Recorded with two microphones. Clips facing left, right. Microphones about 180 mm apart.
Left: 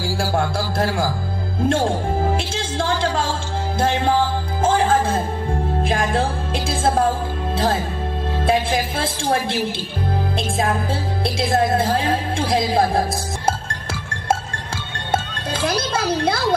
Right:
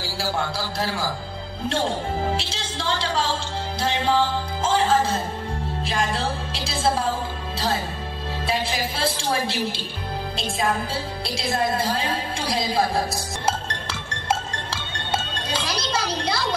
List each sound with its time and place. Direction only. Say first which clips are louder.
0.0 s a woman's voice: left 5 dB; 50° left (ahead or behind)
5.8 s music: left 5 dB; 50° left (ahead or behind)
8.5 s a woman's voice: left 6 dB; 50° left (ahead or behind)
11.2 s a woman's voice: left 6 dB; 55° left (ahead or behind)
15.0 s music: left 4 dB; 55° left (ahead or behind)